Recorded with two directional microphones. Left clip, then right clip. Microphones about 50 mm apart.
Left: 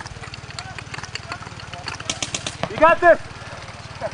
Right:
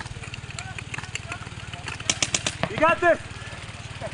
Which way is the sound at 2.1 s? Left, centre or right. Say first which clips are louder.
Right 3 dB; centre.